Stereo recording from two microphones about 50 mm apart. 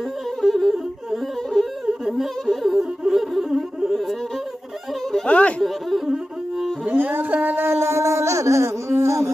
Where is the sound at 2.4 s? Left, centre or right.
Centre.